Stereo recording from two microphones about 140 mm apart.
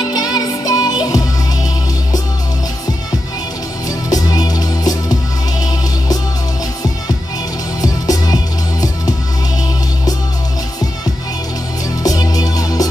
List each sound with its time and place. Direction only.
0.0 s music: 25° left (ahead or behind)
4.1 s music: 25° left (ahead or behind)
7.8 s music: 25° left (ahead or behind)
12.0 s music: 25° left (ahead or behind)